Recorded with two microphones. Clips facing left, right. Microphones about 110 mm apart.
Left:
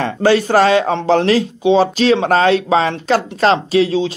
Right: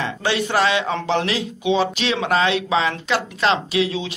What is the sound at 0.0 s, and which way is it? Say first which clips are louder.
Speech: left 9 dB; 40° left (ahead or behind).